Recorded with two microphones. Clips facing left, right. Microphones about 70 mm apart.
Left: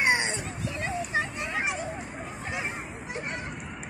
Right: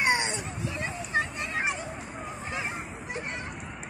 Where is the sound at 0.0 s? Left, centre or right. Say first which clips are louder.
Left 1 dB; left.